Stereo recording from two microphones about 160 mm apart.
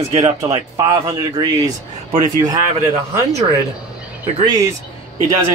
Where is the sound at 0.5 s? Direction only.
30° right (ahead or behind).